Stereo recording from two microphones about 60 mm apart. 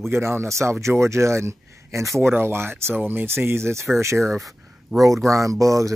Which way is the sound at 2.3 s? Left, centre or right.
Right.